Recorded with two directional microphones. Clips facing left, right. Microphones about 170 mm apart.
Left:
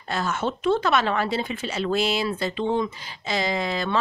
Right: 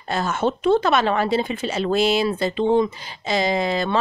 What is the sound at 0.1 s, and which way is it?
Speech, 25° right (ahead or behind).